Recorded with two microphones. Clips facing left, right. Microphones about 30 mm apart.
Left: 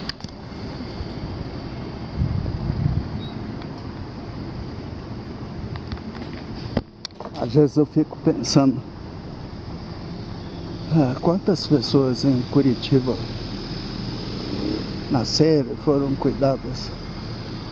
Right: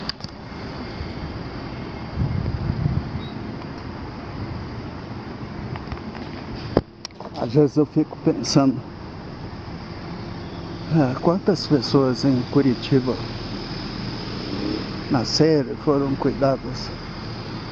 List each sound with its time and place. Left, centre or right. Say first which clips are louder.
7.6 s speech: even; centre
10.9 s speech: even; centre
14.0 s vehicle: even; centre
15.3 s speech: even; centre